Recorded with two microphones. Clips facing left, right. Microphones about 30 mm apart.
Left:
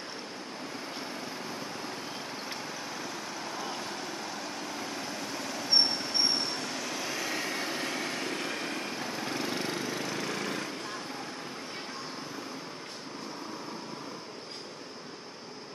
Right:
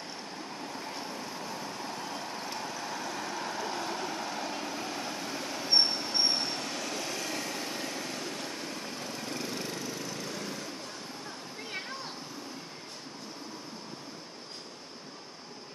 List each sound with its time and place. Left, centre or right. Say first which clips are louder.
0.9 s vehicle: left 1 dB; centre; by 8.9 s left
8.9 s vehicle: left 3 dB; left
10.2 s lawn mower: left 4 dB; left